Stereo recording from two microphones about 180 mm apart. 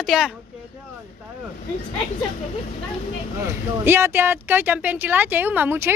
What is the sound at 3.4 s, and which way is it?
Speech, 15° right (ahead or behind).